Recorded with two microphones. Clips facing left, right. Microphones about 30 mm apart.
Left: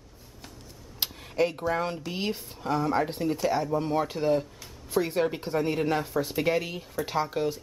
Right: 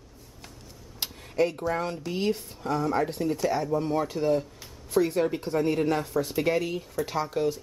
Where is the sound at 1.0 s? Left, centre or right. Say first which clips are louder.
Right 1 dB; centre.